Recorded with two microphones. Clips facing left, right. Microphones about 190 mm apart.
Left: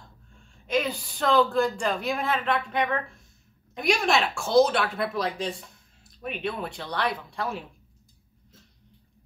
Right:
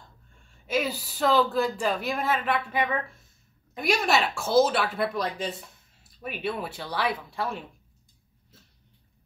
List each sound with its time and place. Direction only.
0.5 s speech: 5° right (ahead or behind)